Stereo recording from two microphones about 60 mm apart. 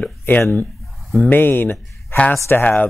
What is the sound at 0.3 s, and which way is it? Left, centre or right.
Speech, left.